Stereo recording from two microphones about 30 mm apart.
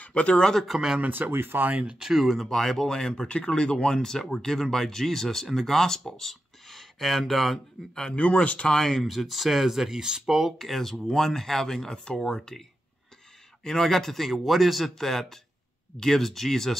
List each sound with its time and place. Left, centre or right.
0.1 s speech: left
1.0 s speech: right
2.1 s speech: centre
2.5 s speech: centre
3.3 s speech: left; by 7.6 s centre
8.4 s speech: left
8.7 s speech: centre
9.0 s speech: centre; by 10.4 s right
10.6 s speech: centre
13.7 s speech: centre
14.3 s speech: centre